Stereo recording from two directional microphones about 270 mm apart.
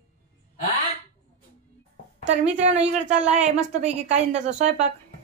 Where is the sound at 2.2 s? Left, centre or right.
Right.